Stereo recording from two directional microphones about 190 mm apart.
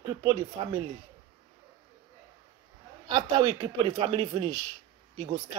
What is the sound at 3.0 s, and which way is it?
A man's voice, 20° right (ahead or behind).